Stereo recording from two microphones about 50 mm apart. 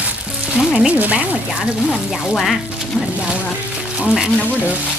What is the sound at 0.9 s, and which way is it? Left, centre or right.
Speech, right.